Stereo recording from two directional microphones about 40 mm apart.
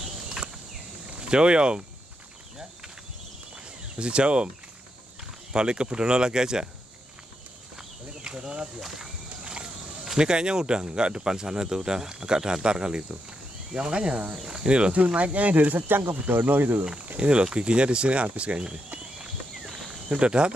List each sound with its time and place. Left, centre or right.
1.2 s speech: right
3.9 s speech: right
5.5 s speech: right
8.2 s speech: right
8.8 s speech: centre
9.4 s a sound: right
10.1 s speech: right
17.2 s speech: right
20.1 s speech: right